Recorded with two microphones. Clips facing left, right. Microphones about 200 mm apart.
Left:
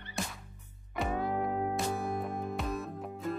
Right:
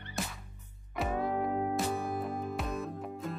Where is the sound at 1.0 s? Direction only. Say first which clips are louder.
Even; centre (ahead or behind).